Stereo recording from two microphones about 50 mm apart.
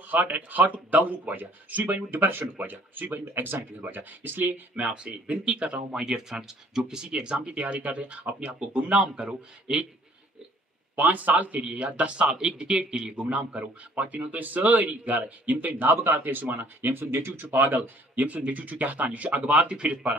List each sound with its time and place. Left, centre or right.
0.3 s a man's voice: right
2.1 s a man's voice: right
4.8 s speech: right
11.0 s a man's voice: right